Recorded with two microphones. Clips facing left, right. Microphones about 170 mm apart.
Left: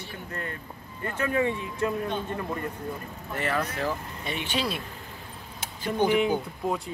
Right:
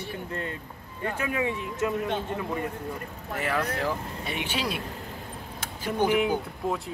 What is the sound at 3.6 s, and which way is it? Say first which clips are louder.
Speech: right 1 dB; 10° left (ahead or behind).